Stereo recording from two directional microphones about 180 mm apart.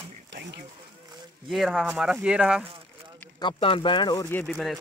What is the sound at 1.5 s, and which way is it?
Speech, centre (ahead or behind).